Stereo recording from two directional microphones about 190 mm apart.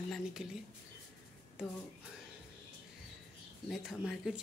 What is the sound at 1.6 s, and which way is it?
Speech, 5° right (ahead or behind).